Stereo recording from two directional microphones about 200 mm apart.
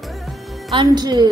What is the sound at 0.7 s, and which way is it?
Speech, 20° right (ahead or behind).